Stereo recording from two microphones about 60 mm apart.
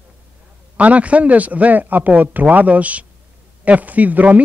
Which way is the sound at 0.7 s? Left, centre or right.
Right.